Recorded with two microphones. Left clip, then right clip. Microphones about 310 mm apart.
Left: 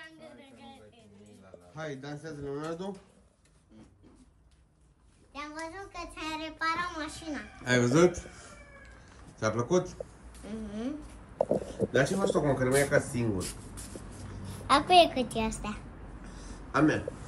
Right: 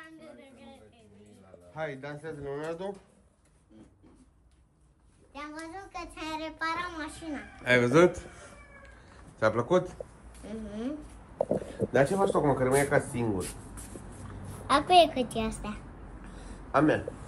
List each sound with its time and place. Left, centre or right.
0.0 s a sound: centre
1.8 s speech: centre
5.3 s child singing: centre
9.1 s a woman's voice: centre
11.3 s child singing: centre
14.4 s a woman's voice: centre
16.3 s a sound: centre